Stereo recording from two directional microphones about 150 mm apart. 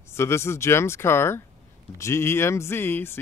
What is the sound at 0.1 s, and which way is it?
Speech, 15° left (ahead or behind).